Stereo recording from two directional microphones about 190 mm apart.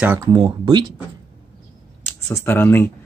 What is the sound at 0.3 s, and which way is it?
Speech, 25° right (ahead or behind).